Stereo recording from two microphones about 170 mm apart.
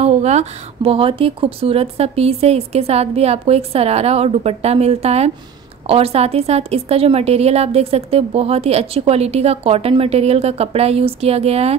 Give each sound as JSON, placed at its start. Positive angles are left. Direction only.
{"t": 0.0, "sound": "a woman's voice", "side_deg": -40}